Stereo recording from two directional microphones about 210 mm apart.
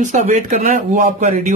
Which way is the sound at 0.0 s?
35° right (ahead or behind).